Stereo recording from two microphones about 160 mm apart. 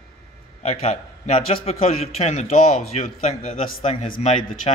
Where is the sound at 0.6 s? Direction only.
40° left (ahead or behind).